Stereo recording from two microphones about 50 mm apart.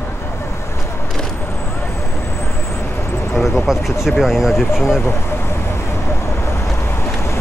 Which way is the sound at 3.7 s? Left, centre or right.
Centre.